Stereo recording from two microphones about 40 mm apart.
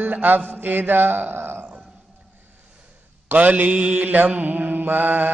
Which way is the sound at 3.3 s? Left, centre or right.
Right.